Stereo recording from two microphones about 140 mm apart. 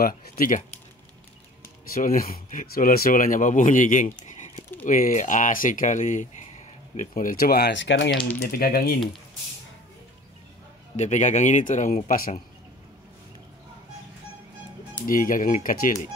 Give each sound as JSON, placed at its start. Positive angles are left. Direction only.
{"t": 0.0, "sound": "speech", "side_deg": 90}
{"t": 2.0, "sound": "speech", "side_deg": 80}
{"t": 7.0, "sound": "speech", "side_deg": 75}
{"t": 11.0, "sound": "a man's voice", "side_deg": 55}
{"t": 15.0, "sound": "speech", "side_deg": 75}